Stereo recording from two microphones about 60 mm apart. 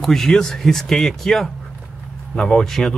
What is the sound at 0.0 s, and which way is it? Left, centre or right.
Speech, centre.